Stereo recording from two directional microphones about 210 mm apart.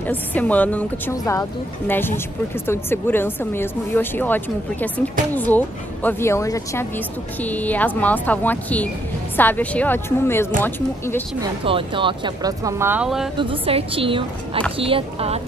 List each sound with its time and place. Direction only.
0.0 s speech: 10° left (ahead or behind)
11.6 s speech: 25° right (ahead or behind); by 13.3 s 5° right (ahead or behind)
13.4 s a woman's voice: 25° right (ahead or behind)